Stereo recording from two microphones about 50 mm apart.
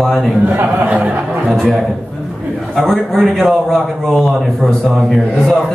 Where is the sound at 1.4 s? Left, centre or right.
Centre.